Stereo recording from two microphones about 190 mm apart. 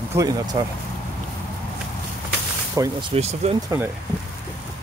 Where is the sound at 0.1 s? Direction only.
20° right (ahead or behind).